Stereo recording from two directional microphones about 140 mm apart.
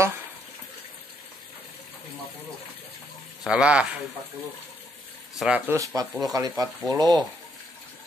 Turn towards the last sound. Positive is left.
turn(degrees=-30)  # may be behind; listen again after turning